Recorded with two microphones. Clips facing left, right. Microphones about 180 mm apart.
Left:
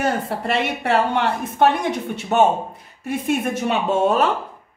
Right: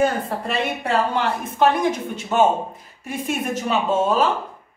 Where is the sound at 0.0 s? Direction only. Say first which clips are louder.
Right 1 dB; 80° left.